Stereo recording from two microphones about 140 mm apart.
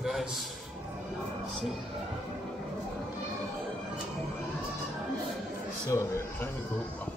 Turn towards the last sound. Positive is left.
turn(degrees=20)  # may be behind; listen again after turning